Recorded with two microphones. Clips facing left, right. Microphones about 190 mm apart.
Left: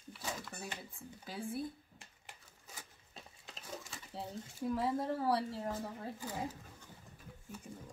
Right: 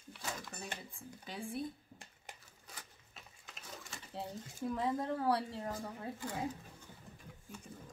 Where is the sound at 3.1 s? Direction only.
30° left (ahead or behind).